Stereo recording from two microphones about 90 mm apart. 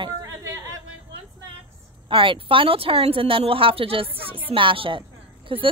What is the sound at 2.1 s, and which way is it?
Speech, 70° right (ahead or behind).